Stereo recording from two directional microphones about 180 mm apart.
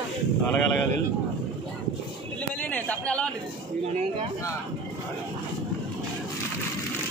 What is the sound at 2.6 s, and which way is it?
Speech, 10° left (ahead or behind).